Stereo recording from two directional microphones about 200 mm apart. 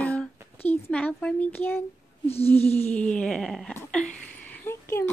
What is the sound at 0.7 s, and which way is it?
Speech, 5° left (ahead or behind).